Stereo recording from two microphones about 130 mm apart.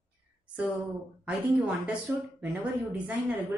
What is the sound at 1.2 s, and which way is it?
A woman's voice, 10° right (ahead or behind).